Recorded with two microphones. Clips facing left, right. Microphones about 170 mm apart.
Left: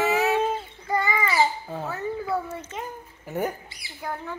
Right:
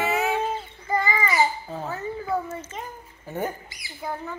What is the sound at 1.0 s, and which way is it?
Babbling, 5° left (ahead or behind).